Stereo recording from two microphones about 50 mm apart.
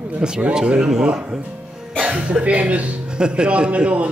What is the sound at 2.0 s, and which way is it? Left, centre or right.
Cough, right.